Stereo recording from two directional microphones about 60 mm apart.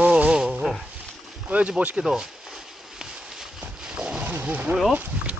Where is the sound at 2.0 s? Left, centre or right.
Centre.